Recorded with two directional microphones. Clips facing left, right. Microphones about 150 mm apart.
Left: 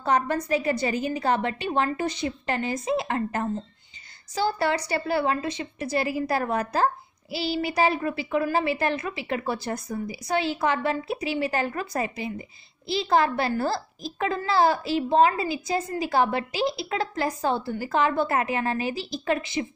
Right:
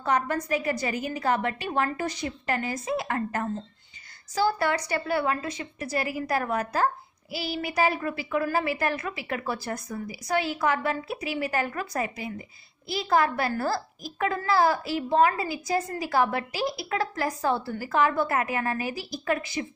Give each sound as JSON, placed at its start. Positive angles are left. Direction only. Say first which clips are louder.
{"t": 0.0, "sound": "a woman's voice", "louder": "left 2 dB", "side_deg": 30}